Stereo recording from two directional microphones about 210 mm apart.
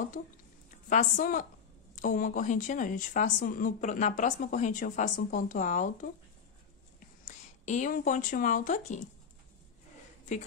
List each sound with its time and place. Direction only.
0.8 s a woman's voice: 35° left (ahead or behind)
7.6 s a woman's voice: 35° left (ahead or behind)